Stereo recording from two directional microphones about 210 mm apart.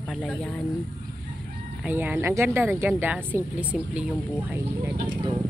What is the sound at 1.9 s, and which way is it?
Speech, 10° right (ahead or behind).